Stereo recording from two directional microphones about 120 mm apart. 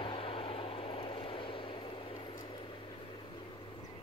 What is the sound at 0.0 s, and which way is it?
Vehicle, 50° left (ahead or behind).